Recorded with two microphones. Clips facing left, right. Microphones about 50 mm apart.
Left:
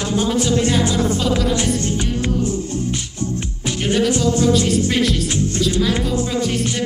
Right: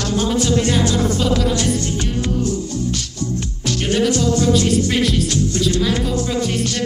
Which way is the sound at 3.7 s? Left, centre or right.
Left.